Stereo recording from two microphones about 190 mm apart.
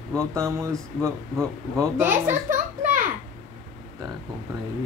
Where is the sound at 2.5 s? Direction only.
45° right (ahead or behind).